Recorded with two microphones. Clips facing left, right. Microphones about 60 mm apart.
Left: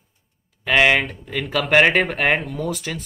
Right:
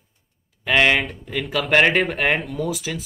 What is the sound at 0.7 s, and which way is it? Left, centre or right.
Speech, centre.